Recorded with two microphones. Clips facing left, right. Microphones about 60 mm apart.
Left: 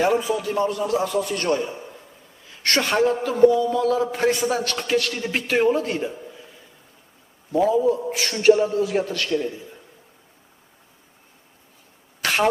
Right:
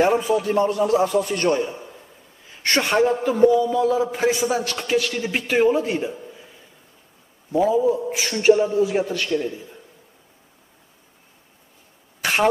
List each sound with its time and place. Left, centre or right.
0.1 s a man's voice: right
1.6 s a man's voice: centre
2.5 s a woman's voice: centre
3.3 s a man's voice: centre
7.5 s a man's voice: centre
12.2 s cough: centre